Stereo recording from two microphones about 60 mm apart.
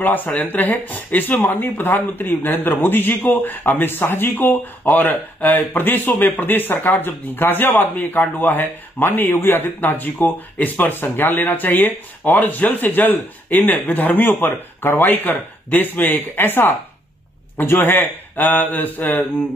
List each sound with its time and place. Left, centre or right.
0.0 s speech: left